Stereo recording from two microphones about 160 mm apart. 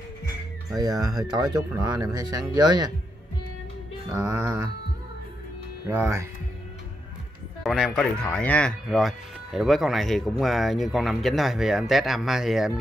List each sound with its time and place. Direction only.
0.7 s speech: 25° right (ahead or behind)
4.1 s speech: 20° right (ahead or behind)
5.9 s speech: 20° right (ahead or behind)
7.6 s speech: 5° right (ahead or behind)